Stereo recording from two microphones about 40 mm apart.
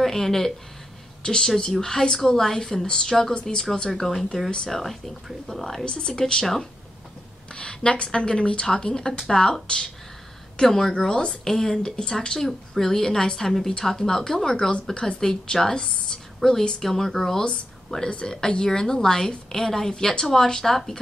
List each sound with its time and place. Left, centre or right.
0.0 s speech: centre
5.9 s a woman's voice: centre
6.4 s speech: centre
7.5 s a woman's voice: left
16.3 s a woman's voice: centre
17.4 s speech: centre